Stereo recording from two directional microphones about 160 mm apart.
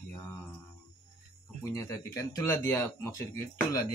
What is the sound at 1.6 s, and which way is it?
Speech, 20° left (ahead or behind).